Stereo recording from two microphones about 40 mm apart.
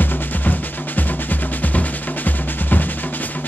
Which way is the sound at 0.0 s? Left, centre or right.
Left.